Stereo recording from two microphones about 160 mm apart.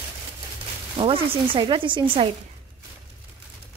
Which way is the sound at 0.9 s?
35° right (ahead or behind).